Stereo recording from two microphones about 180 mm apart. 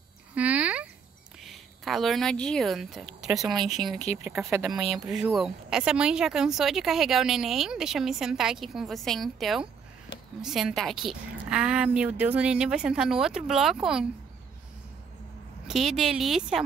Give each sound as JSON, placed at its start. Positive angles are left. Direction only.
{"t": 0.3, "sound": "a sound", "side_deg": -10}
{"t": 1.4, "sound": "speech", "side_deg": 0}
{"t": 4.0, "sound": "speech", "side_deg": 40}
{"t": 4.6, "sound": "a woman's voice", "side_deg": 0}
{"t": 15.6, "sound": "a woman's voice", "side_deg": 0}